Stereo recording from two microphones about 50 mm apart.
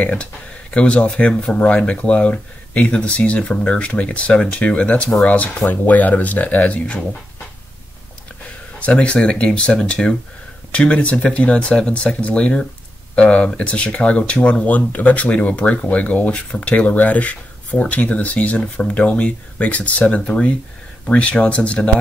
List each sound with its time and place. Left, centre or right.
0.0 s speech: left
1.6 s speech: left
8.7 s speech: left